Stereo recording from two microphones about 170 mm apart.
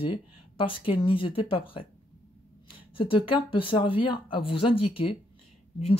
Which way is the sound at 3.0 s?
30° left (ahead or behind).